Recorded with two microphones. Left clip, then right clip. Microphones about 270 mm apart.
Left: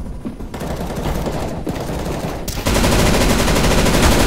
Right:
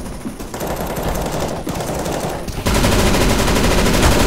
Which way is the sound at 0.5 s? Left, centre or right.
Right.